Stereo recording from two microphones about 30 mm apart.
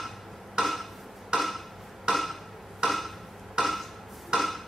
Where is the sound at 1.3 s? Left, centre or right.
Right.